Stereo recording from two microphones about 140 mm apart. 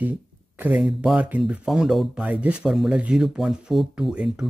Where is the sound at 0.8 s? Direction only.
Centre (ahead or behind).